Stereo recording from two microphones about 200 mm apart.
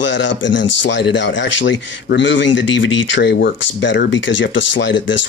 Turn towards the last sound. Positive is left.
turn(degrees=65)  # may be behind; listen again after turning